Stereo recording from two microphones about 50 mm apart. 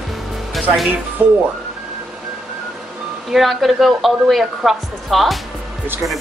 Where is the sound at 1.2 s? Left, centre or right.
Right.